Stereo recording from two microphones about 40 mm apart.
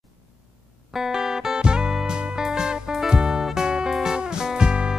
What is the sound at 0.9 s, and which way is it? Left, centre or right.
Music, centre.